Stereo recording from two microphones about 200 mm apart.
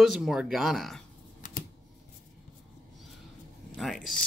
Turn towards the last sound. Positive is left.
turn(degrees=0)  # may be behind; listen again after turning